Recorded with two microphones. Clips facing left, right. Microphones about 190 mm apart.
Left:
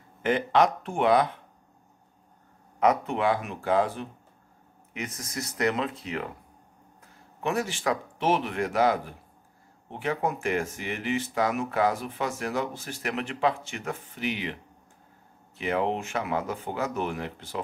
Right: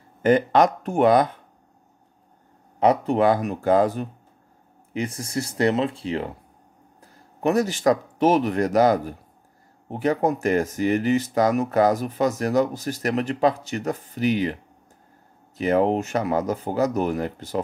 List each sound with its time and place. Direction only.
0.2 s speech: 40° right (ahead or behind)
2.8 s speech: 30° right (ahead or behind)